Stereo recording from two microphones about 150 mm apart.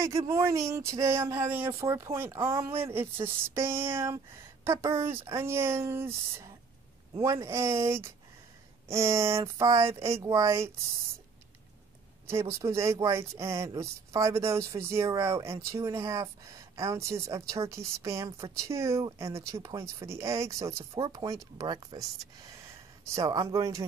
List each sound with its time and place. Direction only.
0.3 s speech: 20° right (ahead or behind)
12.3 s speech: 20° right (ahead or behind)
23.1 s speech: 25° right (ahead or behind)